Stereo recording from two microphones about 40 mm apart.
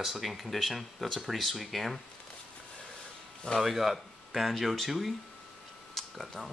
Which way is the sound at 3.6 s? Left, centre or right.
Centre.